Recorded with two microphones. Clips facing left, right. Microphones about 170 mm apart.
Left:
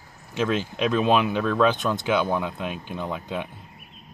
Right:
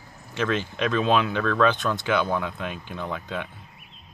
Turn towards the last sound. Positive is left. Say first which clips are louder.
# left 1 dB
turn(degrees=15)  # may be behind; listen again after turning